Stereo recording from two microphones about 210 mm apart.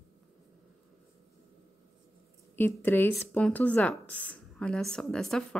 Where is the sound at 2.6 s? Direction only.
10° left (ahead or behind).